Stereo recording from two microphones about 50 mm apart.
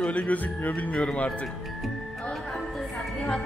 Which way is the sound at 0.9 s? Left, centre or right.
Left.